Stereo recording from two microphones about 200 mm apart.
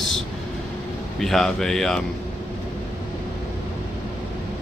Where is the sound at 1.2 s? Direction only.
Centre (ahead or behind).